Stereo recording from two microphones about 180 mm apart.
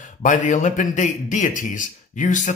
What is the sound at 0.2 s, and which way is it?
Speech, 45° left (ahead or behind).